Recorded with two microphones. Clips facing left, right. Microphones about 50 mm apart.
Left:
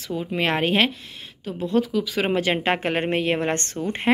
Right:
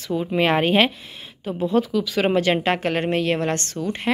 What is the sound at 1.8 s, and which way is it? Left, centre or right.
A woman's voice, centre.